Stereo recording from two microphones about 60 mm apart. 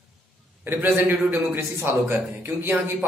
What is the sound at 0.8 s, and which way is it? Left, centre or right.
A man's voice, right.